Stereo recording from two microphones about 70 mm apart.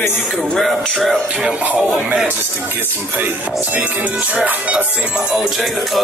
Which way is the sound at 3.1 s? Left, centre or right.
Right.